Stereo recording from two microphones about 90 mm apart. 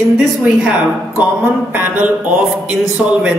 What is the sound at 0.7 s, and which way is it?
A man's voice, 15° right (ahead or behind).